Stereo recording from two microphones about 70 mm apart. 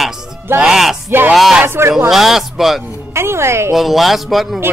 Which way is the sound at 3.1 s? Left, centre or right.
Right.